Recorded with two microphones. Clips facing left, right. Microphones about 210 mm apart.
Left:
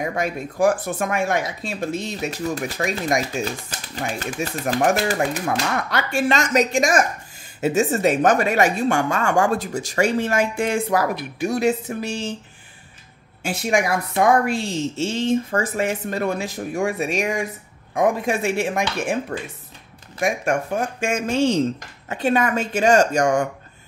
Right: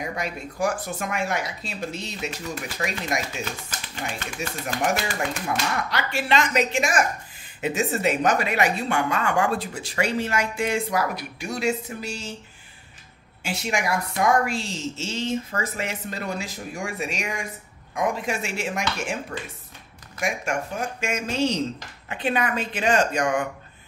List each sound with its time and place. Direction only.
0.0 s speech: 50° left (ahead or behind)
3.9 s speech: 35° left (ahead or behind)
5.9 s speech: 50° left (ahead or behind)
13.4 s speech: 50° left (ahead or behind)
20.2 s speech: 50° left (ahead or behind)